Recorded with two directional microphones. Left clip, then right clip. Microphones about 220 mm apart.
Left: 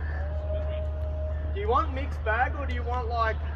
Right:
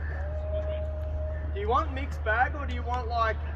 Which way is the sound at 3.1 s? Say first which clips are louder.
Even; 30° right (ahead or behind).